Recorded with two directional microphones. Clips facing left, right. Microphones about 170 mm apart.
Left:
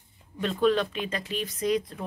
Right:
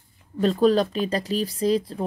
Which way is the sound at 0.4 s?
35° right (ahead or behind).